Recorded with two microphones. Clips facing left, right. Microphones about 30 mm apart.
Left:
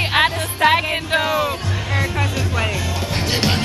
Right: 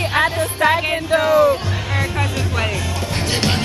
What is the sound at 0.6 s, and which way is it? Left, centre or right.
Music, left.